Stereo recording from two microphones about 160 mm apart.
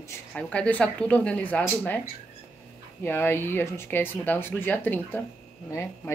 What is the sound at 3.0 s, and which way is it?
Speech, 15° left (ahead or behind).